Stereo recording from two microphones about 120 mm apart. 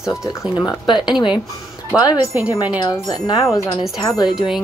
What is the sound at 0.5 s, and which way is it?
Speech, 35° left (ahead or behind).